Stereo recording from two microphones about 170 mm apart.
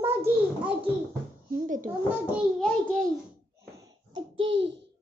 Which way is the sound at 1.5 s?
50° right (ahead or behind).